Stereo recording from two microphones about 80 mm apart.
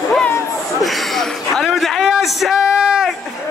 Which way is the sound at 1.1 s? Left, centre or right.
Centre.